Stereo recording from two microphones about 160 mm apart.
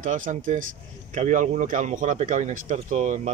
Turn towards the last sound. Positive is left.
turn(degrees=-50)  # may be behind; listen again after turning